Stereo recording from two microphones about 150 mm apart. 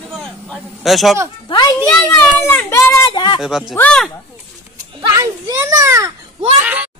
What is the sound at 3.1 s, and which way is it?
Speech, 30° left (ahead or behind).